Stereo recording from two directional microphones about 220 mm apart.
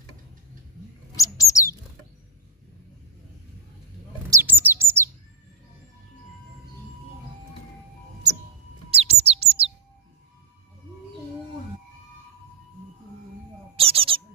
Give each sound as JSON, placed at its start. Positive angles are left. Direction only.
{"t": 1.1, "sound": "bird", "side_deg": 15}
{"t": 4.3, "sound": "bird", "side_deg": -10}
{"t": 8.9, "sound": "bird", "side_deg": -25}
{"t": 13.7, "sound": "bird", "side_deg": -25}